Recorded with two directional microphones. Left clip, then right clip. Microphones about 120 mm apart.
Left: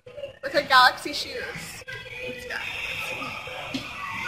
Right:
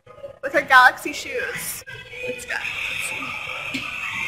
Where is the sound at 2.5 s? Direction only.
25° right (ahead or behind).